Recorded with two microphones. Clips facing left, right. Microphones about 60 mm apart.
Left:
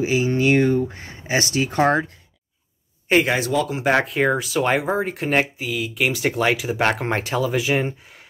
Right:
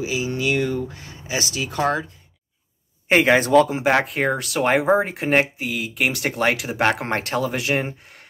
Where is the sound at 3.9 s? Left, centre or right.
Centre.